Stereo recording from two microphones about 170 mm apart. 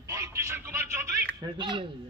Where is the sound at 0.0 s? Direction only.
20° right (ahead or behind).